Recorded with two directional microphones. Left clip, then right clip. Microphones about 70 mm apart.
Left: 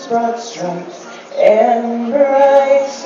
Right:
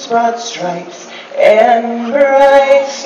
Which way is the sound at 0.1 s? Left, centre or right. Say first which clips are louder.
Right 4 dB; left.